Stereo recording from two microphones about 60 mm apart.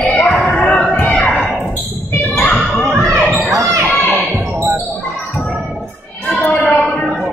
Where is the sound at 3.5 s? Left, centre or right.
Right.